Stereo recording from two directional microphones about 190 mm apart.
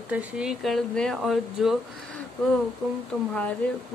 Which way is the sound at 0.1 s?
5° right (ahead or behind).